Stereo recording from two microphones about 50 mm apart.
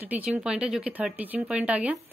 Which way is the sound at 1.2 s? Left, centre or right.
Right.